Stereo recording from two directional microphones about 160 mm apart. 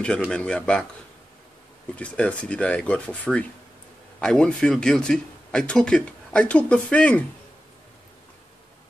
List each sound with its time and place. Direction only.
0.3 s speech: 5° left (ahead or behind)
2.0 s speech: 5° left (ahead or behind)